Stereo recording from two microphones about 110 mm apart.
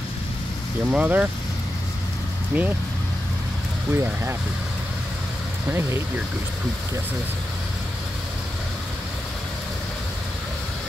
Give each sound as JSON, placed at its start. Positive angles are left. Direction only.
{"t": 0.8, "sound": "speech", "side_deg": -15}
{"t": 2.5, "sound": "speech", "side_deg": -10}
{"t": 3.9, "sound": "speech", "side_deg": -20}
{"t": 5.7, "sound": "speech", "side_deg": -25}